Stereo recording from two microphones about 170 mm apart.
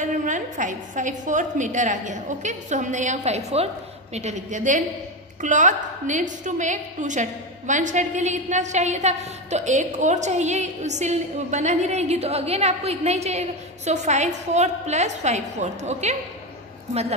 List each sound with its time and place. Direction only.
0.0 s a woman's voice: 45° right (ahead or behind)